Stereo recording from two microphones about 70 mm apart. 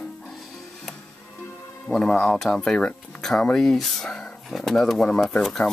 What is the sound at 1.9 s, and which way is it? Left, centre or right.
Speech, centre.